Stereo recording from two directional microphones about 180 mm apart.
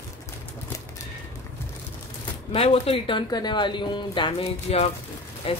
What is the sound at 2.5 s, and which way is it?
Speech, 35° left (ahead or behind).